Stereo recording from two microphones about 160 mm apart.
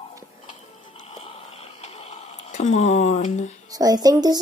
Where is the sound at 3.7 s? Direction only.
25° right (ahead or behind).